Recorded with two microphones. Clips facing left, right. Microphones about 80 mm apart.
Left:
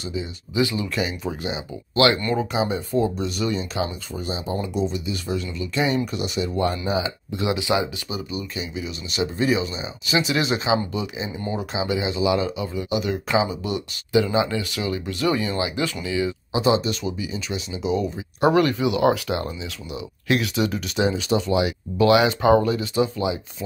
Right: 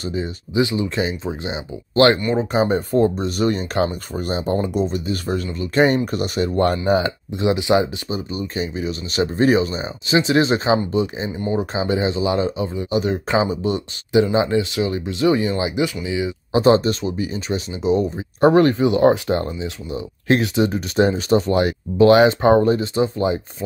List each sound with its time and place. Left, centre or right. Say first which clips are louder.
0.6 s speech: right 3 dB; right
2.1 s speech: right 3 dB; centre
2.5 s speech: right 5 dB; right
7.3 s speech: right 5 dB; right
7.7 s speech: right 5 dB; right; by 16.3 s centre
16.5 s speech: right 6 dB; right
21.0 s speech: right 5 dB; right